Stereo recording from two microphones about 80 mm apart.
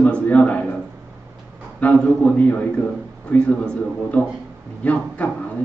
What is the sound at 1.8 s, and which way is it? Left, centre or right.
A man's voice, centre.